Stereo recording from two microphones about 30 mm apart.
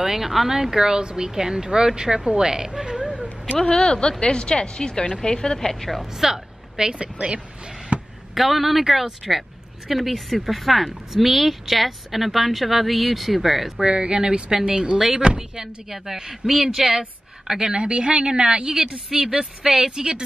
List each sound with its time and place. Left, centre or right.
0.0 s speech: centre
3.7 s speech: left
5.7 s a woman's voice: centre
6.1 s speech: centre
6.9 s speech: right
7.9 s a sound: right
8.4 s speech: centre
13.8 s speech: right; by 17.0 s centre
17.6 s speech: right
19.1 s speech: centre